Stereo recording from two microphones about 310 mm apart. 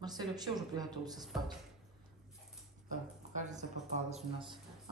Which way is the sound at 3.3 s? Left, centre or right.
Right.